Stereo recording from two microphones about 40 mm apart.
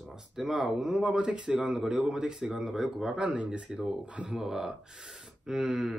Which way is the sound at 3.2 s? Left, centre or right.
Right.